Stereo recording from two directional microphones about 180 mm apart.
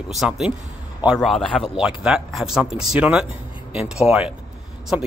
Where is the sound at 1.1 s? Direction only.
5° left (ahead or behind).